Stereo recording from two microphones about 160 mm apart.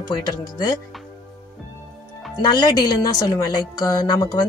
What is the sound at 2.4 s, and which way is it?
Speech, 25° left (ahead or behind).